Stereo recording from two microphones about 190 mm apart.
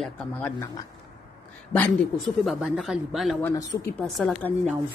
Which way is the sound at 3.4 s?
15° left (ahead or behind).